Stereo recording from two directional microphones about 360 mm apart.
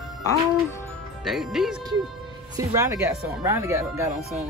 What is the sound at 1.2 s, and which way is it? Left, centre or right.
Speech, centre.